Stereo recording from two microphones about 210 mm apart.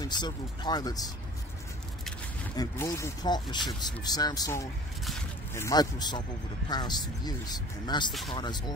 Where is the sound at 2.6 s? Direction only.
15° left (ahead or behind).